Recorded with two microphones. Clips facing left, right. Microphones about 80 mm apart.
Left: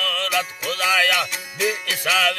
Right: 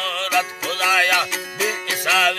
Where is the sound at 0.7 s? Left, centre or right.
Right.